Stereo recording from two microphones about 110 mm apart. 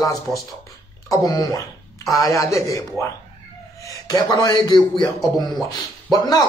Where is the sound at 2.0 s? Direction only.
Centre (ahead or behind).